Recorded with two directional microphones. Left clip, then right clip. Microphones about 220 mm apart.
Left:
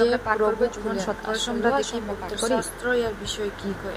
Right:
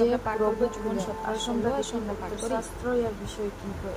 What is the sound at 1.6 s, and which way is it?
Speech, 15° left (ahead or behind).